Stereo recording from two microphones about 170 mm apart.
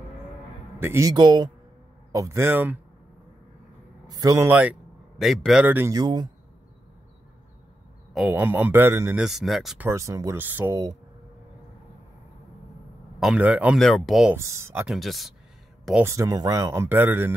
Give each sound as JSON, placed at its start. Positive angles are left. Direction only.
{"t": 0.7, "sound": "speech", "side_deg": -15}
{"t": 4.1, "sound": "a man's voice", "side_deg": -20}
{"t": 5.9, "sound": "speech", "side_deg": -25}
{"t": 8.1, "sound": "a man's voice", "side_deg": 0}
{"t": 9.2, "sound": "speech", "side_deg": 0}
{"t": 9.8, "sound": "speech", "side_deg": -15}
{"t": 13.2, "sound": "speech", "side_deg": -5}
{"t": 14.3, "sound": "speech", "side_deg": -15}
{"t": 16.0, "sound": "speech", "side_deg": -20}